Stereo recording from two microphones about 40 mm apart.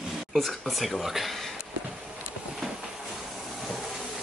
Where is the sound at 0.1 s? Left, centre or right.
Centre.